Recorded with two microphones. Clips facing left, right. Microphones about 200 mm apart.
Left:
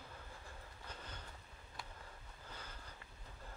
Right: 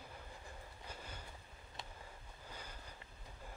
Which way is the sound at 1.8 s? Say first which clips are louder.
Right 1 dB; 25° right (ahead or behind).